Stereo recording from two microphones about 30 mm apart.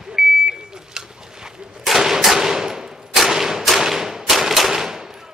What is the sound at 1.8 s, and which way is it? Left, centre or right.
Gunshot, centre.